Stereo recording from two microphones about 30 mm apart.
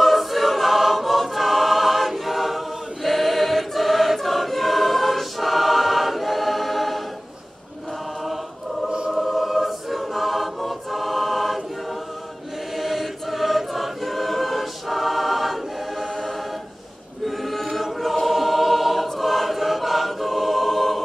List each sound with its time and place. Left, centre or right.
0.0 s choir: centre
8.8 s choir: right
9.1 s choir: centre
12.7 s choir: centre
17.2 s choir: centre